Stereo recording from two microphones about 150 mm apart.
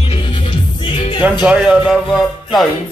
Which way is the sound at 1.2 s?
10° right (ahead or behind).